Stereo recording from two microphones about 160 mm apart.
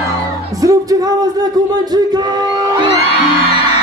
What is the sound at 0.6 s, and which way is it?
Music, 20° right (ahead or behind).